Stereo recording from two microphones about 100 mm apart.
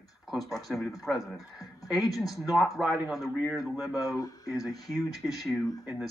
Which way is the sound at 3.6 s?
35° left (ahead or behind).